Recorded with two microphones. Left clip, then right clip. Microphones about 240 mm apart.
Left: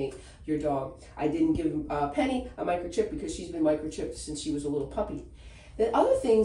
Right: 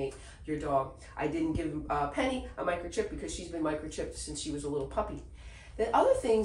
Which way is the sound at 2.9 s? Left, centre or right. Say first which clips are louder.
Left 5 dB; centre.